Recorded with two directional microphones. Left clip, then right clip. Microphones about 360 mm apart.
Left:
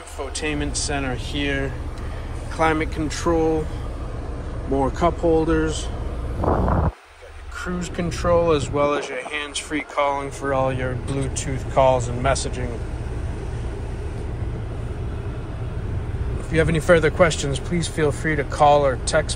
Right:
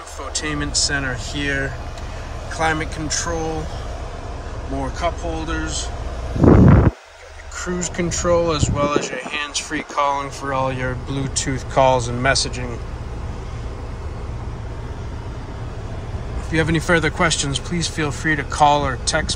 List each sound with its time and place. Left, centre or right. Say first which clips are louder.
0.3 s speech: right 3 dB; centre
4.9 s speech: left 5 dB; centre
6.4 s a sound: right 8 dB; right
7.5 s speech: right 4 dB; centre
16.5 s speech: left 1 dB; centre